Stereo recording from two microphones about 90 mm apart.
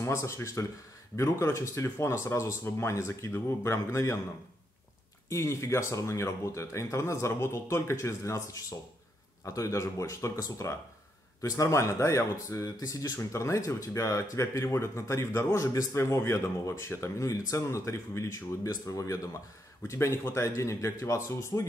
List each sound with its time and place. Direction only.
0.0 s speech: 35° left (ahead or behind)
5.3 s speech: 30° left (ahead or behind)